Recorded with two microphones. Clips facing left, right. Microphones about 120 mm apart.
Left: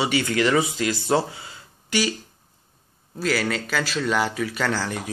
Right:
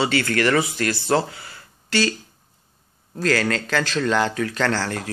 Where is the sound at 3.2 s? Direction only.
5° left (ahead or behind).